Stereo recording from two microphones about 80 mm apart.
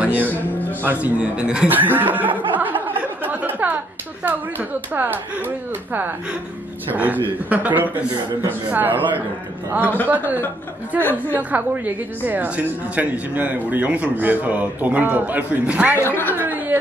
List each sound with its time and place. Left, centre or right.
0.0 s speech: right
1.7 s a man's voice: right
2.3 s a sound: right
6.9 s a man's voice: right
11.0 s a man's voice: left
11.3 s a man's voice: right
16.0 s a man's voice: left
16.3 s chuckle: right